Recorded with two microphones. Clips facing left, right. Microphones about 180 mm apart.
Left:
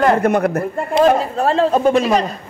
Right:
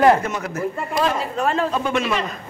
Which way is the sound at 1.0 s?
40° left (ahead or behind).